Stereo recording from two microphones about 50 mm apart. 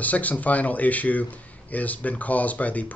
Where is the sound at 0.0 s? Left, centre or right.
Left.